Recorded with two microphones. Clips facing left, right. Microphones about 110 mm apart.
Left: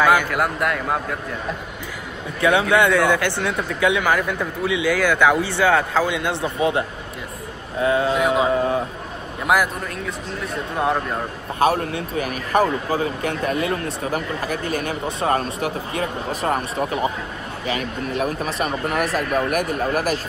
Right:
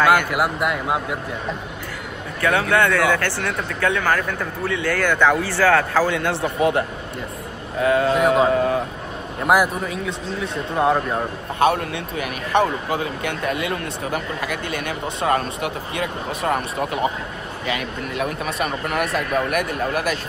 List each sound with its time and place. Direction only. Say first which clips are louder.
0.0 s a sound: even; 5° left (ahead or behind)
0.3 s a man's voice: even; 5° right (ahead or behind)
2.4 s speech: left 2 dB; 20° left (ahead or behind)
5.4 s speech: right 1 dB; 20° left (ahead or behind)
7.8 s speech: right 1 dB; 25° left (ahead or behind)
8.1 s a man's voice: right 2 dB; centre (ahead or behind)
8.5 s speech: right 1 dB; 25° left (ahead or behind)
9.4 s a man's voice: right 2 dB; centre (ahead or behind)
11.6 s speech: even; 35° left (ahead or behind)